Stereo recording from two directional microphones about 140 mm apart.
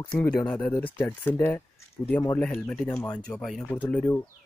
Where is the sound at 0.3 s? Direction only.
10° left (ahead or behind).